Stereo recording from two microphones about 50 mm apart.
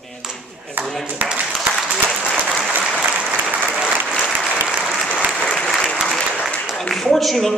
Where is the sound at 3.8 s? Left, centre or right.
Centre.